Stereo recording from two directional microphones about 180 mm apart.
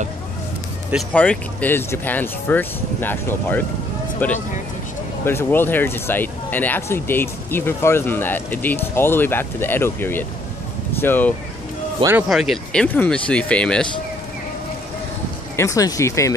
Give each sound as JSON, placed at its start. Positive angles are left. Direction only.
{"t": 1.1, "sound": "speech", "side_deg": 10}
{"t": 12.0, "sound": "speech", "side_deg": -15}
{"t": 12.3, "sound": "speech", "side_deg": 0}
{"t": 15.5, "sound": "speech", "side_deg": 15}